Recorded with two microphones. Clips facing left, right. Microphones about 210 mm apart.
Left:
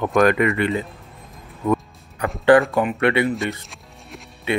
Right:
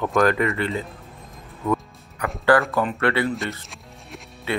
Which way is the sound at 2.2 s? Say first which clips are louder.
Left 4 dB; 25° left (ahead or behind).